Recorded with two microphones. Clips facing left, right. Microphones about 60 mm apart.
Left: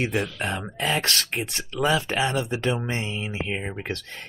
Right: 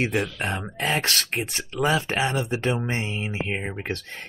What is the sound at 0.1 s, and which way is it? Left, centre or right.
Speech, right.